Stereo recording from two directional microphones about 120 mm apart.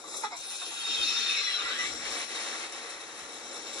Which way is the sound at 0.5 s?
5° right (ahead or behind).